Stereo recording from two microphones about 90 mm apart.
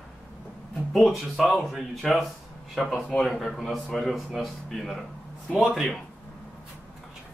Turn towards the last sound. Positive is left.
turn(degrees=0)  # may be behind; listen again after turning